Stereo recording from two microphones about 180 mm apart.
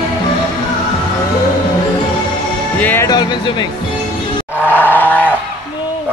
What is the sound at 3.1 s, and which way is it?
Speech, 25° left (ahead or behind).